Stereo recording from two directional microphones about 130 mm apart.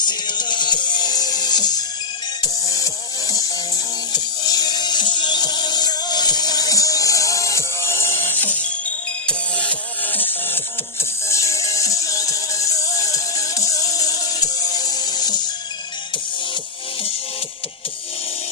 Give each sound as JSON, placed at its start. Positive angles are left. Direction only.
{"t": 0.0, "sound": "music", "side_deg": 35}